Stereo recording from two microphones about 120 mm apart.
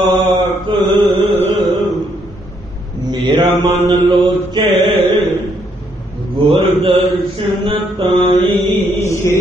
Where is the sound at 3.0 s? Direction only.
40° right (ahead or behind).